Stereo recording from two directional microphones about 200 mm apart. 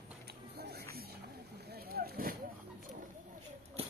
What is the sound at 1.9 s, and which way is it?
Vehicle, 50° right (ahead or behind).